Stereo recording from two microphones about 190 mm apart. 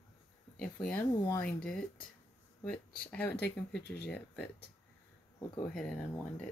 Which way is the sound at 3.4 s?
60° left (ahead or behind).